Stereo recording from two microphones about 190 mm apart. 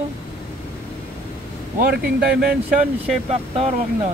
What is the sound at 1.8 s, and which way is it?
Speech, 50° right (ahead or behind).